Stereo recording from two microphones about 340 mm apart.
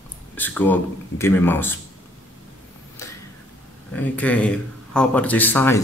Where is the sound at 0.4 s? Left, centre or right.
Centre.